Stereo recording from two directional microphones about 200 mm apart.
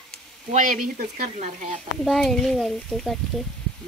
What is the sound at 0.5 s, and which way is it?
Frying, 40° right (ahead or behind).